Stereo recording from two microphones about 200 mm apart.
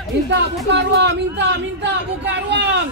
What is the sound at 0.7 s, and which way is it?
Speech, 60° right (ahead or behind).